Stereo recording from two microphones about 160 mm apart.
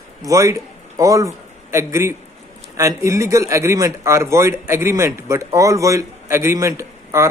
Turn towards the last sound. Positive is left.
turn(degrees=-20)  # may be behind; listen again after turning